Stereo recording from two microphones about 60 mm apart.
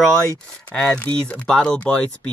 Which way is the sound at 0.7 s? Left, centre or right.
Centre.